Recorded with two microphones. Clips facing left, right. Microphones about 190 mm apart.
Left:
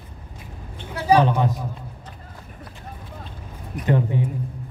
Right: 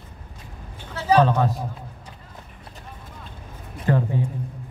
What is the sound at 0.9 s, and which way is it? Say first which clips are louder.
Speech: even; 15° left (ahead or behind).